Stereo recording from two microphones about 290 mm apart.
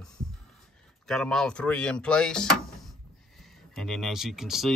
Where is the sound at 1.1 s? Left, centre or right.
Centre.